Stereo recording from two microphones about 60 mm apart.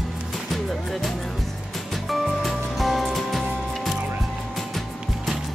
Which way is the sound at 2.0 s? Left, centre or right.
Centre.